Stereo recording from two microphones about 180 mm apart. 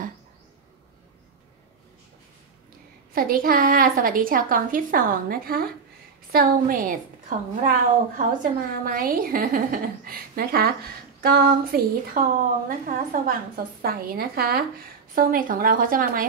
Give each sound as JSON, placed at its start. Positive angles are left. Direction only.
{"t": 3.1, "sound": "a woman's voice", "side_deg": -50}